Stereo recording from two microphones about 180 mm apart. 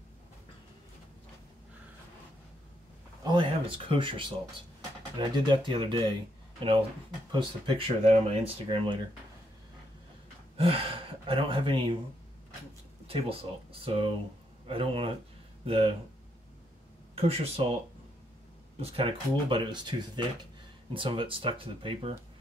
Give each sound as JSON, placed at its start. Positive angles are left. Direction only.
{"t": 3.3, "sound": "speech", "side_deg": -30}
{"t": 10.6, "sound": "speech", "side_deg": -30}
{"t": 13.0, "sound": "speech", "side_deg": -30}
{"t": 17.1, "sound": "speech", "side_deg": -35}
{"t": 18.8, "sound": "speech", "side_deg": -30}